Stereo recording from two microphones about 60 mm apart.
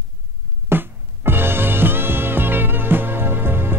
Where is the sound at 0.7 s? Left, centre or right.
Right.